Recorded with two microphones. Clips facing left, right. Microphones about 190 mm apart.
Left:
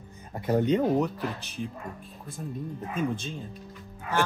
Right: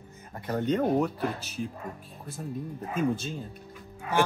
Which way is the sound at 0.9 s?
Centre (ahead or behind).